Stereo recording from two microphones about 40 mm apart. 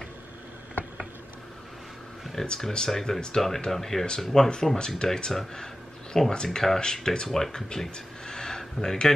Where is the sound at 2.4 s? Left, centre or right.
Centre.